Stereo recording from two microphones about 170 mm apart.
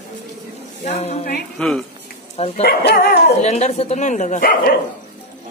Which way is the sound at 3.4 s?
40° left (ahead or behind).